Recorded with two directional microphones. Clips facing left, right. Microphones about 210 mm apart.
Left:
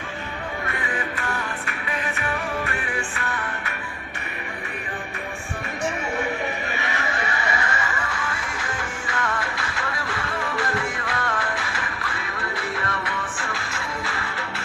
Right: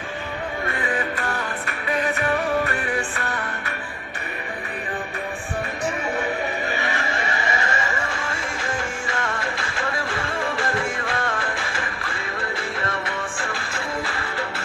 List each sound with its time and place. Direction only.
1.7 s music: 40° right (ahead or behind)
6.7 s neigh: 35° right (ahead or behind)
9.1 s music: 25° right (ahead or behind)